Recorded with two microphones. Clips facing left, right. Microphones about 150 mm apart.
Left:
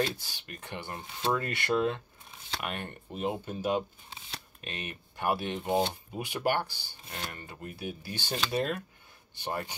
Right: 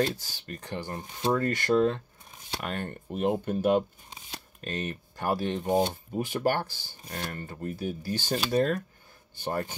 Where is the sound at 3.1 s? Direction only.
55° right (ahead or behind).